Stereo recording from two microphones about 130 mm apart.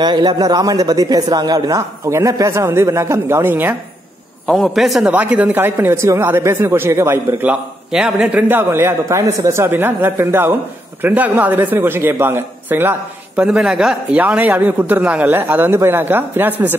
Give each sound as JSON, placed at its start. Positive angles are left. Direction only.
{"t": 0.0, "sound": "speech", "side_deg": -30}
{"t": 4.5, "sound": "a man's voice", "side_deg": 0}
{"t": 5.1, "sound": "a man's voice", "side_deg": -10}
{"t": 7.9, "sound": "a man's voice", "side_deg": -5}